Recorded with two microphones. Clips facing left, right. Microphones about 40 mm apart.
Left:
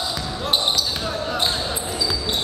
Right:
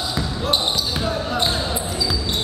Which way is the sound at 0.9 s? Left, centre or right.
Centre.